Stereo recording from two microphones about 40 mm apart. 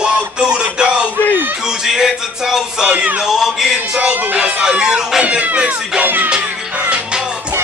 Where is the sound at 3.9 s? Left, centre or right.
Right.